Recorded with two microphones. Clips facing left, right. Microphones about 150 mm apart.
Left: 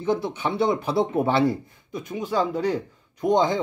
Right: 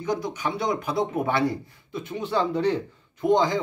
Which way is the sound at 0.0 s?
25° left (ahead or behind).